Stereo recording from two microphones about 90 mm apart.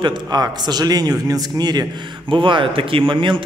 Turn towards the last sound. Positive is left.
turn(degrees=-65)  # may be behind; listen again after turning